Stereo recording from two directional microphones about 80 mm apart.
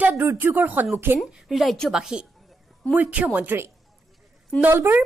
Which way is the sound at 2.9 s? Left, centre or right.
Centre.